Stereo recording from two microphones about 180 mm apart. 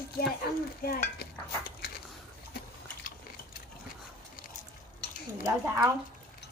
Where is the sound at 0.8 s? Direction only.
55° left (ahead or behind).